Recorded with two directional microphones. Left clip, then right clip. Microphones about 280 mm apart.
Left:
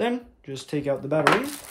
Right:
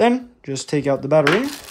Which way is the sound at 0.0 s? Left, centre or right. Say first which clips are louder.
Right 9 dB; right.